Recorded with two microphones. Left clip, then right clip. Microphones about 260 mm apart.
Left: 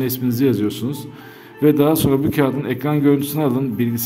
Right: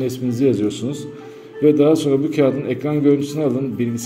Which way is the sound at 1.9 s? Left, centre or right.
Left.